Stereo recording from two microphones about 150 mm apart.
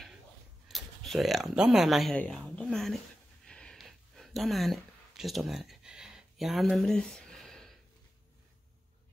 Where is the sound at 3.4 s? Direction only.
5° left (ahead or behind).